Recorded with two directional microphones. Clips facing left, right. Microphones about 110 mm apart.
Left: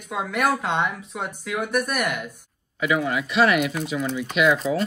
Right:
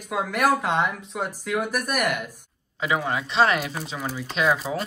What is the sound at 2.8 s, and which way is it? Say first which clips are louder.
Speech: left 2 dB; 30° right (ahead or behind).